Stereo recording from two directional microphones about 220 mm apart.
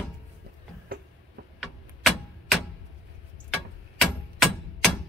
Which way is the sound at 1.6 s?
Centre (ahead or behind).